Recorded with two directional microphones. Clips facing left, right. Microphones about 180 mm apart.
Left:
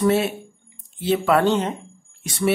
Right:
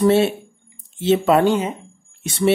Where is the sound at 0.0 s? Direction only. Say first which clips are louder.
Right 4 dB; 30° right (ahead or behind); by 1.8 s 10° right (ahead or behind).